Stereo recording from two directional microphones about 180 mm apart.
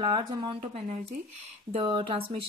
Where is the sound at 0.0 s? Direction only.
25° right (ahead or behind).